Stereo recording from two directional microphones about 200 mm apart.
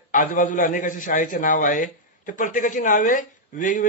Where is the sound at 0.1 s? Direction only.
40° left (ahead or behind).